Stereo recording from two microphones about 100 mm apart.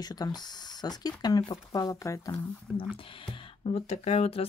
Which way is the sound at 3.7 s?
90° left.